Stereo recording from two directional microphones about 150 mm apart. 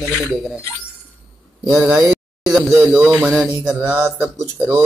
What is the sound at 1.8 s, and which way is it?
Speech, 10° right (ahead or behind).